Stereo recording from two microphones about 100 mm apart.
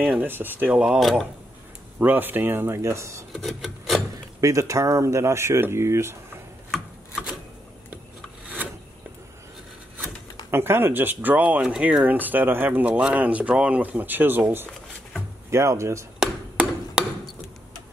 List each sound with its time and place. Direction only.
0.2 s speech: 20° right (ahead or behind)
0.8 s speech: centre (ahead or behind)
2.0 s speech: 20° right (ahead or behind)
3.3 s filing: centre (ahead or behind)
4.4 s speech: 30° right (ahead or behind)
10.5 s speech: 25° right (ahead or behind)
16.2 s hammer: 5° right (ahead or behind)